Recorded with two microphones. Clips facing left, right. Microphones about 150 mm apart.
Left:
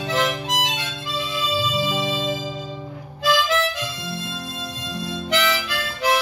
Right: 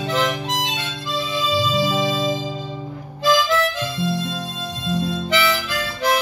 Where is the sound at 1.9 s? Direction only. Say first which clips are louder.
Right 3 dB; 40° right (ahead or behind).